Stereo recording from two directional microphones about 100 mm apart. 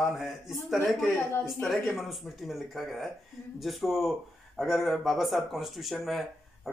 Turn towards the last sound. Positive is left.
turn(degrees=0)  # may be behind; listen again after turning